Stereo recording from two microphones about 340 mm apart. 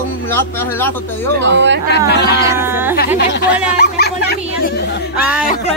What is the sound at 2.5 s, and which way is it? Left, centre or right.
Speech, centre.